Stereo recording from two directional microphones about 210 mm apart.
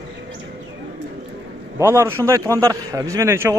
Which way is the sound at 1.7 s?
10° right (ahead or behind).